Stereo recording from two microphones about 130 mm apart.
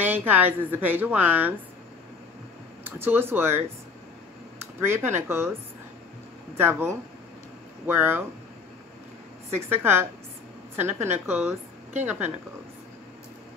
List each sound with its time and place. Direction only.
0.0 s a woman's voice: 15° right (ahead or behind)
2.8 s a woman's voice: 15° right (ahead or behind)
6.5 s a woman's voice: 20° right (ahead or behind)
9.6 s a woman's voice: 20° right (ahead or behind)